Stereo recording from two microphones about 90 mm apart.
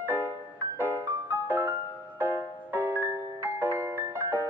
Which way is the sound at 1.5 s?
25° right (ahead or behind).